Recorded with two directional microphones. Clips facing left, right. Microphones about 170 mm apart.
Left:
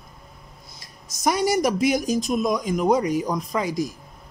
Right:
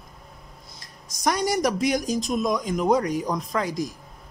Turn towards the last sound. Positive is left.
turn(degrees=5)  # may be behind; listen again after turning